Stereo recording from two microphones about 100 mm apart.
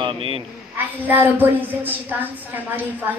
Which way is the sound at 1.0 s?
20° right (ahead or behind).